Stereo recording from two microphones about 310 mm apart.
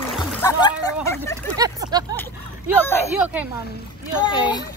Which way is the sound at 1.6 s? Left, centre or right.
Centre.